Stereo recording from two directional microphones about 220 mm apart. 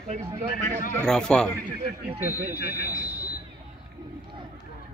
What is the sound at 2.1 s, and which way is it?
Speech, 10° right (ahead or behind).